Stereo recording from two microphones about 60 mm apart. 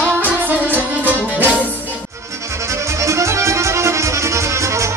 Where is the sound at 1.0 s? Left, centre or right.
Right.